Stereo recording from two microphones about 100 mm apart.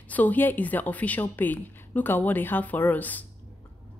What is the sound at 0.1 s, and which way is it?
Speech, 15° left (ahead or behind).